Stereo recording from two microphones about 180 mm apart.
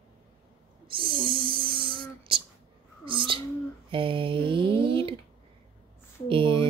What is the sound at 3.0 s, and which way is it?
Cat, 30° right (ahead or behind).